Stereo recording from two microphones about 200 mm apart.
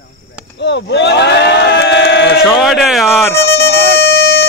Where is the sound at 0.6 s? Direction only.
60° left (ahead or behind).